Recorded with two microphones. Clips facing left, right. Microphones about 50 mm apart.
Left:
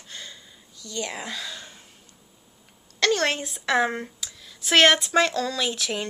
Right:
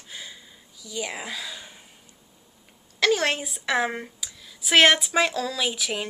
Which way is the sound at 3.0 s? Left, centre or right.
Centre.